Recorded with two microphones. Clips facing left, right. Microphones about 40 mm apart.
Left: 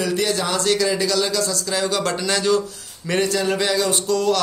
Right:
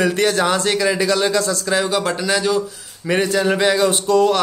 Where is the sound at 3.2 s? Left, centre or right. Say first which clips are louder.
Right 4 dB; right.